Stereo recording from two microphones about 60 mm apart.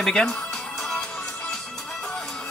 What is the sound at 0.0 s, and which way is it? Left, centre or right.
Speech, centre.